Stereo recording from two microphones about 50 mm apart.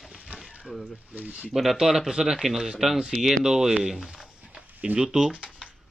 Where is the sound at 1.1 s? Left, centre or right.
Right.